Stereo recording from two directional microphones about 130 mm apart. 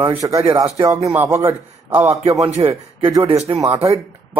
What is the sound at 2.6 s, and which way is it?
Speech, 35° right (ahead or behind).